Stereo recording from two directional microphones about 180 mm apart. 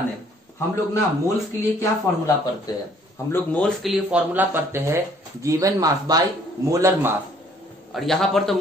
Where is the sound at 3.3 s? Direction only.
5° left (ahead or behind); by 7.1 s 15° right (ahead or behind).